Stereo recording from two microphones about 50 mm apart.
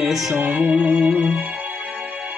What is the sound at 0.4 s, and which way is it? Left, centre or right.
Music, right.